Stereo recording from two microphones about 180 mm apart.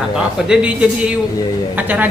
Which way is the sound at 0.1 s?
5° right (ahead or behind).